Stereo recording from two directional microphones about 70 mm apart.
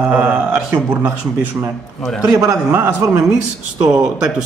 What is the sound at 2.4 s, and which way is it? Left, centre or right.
Speech, right.